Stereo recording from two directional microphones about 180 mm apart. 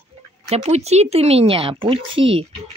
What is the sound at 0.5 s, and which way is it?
Speech, 35° right (ahead or behind).